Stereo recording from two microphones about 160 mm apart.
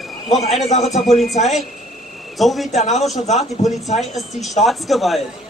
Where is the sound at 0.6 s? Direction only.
45° left (ahead or behind).